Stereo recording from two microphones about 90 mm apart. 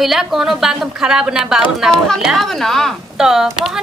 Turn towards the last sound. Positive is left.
turn(degrees=-5)  # may be behind; listen again after turning